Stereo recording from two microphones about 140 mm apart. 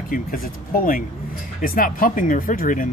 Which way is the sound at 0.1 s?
85° left.